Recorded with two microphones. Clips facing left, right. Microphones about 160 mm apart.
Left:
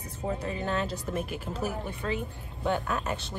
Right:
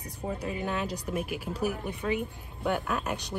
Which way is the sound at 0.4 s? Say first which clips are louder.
Even; 10° right (ahead or behind).